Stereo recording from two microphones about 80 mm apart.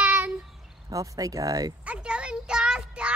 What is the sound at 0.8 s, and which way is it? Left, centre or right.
Speech, right.